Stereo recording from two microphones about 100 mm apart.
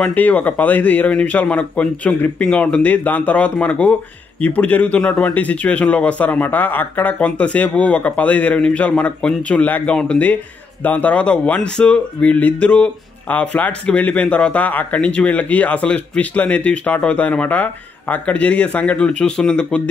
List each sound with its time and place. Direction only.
0.0 s speech: 15° left (ahead or behind)